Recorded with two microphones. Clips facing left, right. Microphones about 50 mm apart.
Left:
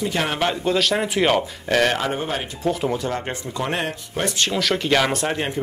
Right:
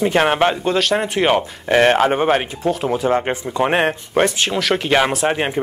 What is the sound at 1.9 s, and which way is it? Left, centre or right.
Speech, right.